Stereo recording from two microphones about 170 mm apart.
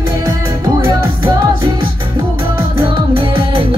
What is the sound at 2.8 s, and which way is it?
Music, 30° right (ahead or behind).